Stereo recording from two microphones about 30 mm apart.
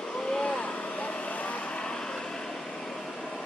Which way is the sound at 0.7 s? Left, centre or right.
Left.